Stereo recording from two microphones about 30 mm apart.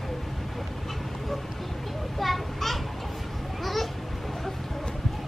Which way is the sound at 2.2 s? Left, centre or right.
Centre.